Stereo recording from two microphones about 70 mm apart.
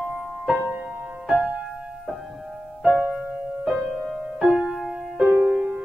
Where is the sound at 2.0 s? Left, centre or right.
Centre.